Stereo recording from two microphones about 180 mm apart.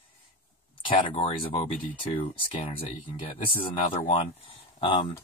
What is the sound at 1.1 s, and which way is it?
Speech, 30° left (ahead or behind).